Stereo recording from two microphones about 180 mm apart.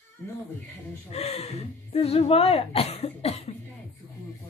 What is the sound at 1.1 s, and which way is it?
Speech, 35° left (ahead or behind).